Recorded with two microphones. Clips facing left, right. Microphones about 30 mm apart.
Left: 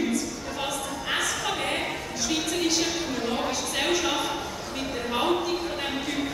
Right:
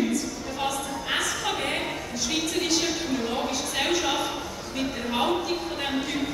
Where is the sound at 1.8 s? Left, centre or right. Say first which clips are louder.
Even; left.